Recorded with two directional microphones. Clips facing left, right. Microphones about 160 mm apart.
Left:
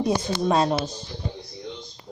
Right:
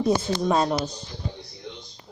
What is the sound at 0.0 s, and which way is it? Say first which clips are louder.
Speech: right 1 dB; 15° left (ahead or behind).